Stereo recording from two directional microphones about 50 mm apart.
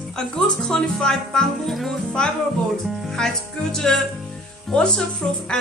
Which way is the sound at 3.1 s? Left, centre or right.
Centre.